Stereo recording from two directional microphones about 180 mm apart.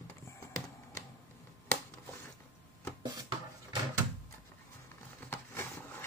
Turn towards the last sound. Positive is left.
turn(degrees=10)  # may be behind; listen again after turning